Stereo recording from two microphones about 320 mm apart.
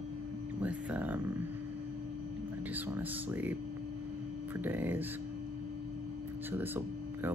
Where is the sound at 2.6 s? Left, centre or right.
Centre.